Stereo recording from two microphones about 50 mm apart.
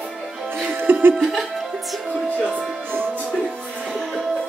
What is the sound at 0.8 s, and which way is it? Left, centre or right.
Laughter, right.